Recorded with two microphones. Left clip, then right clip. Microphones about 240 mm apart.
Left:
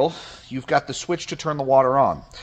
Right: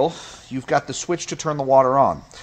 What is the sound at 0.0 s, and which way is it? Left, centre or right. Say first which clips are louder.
Speech: even; centre.